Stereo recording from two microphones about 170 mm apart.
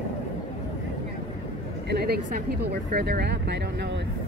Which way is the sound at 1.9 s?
70° right (ahead or behind).